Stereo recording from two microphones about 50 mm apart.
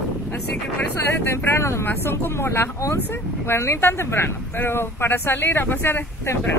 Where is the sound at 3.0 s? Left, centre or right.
Left.